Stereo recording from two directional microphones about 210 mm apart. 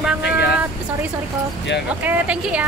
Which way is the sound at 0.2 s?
50° left (ahead or behind).